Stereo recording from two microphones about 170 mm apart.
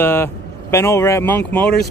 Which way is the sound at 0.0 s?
15° left (ahead or behind).